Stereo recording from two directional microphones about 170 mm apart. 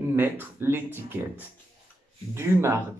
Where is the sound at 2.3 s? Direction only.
15° right (ahead or behind).